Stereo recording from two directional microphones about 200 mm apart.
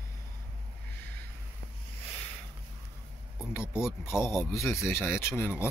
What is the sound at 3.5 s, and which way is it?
Speech, 10° left (ahead or behind).